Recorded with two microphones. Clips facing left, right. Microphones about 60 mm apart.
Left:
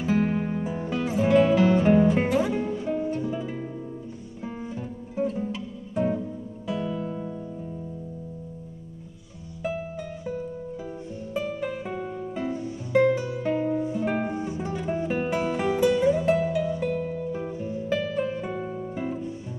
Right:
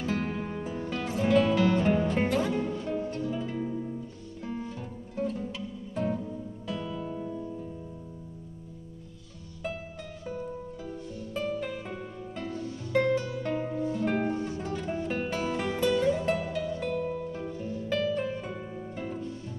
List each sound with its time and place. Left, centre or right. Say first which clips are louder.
0.0 s music: left 7 dB; centre
9.6 s music: left 6 dB; centre